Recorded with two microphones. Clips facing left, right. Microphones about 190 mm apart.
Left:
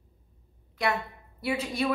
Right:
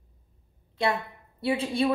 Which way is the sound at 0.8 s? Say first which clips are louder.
Right 2 dB; 30° right (ahead or behind).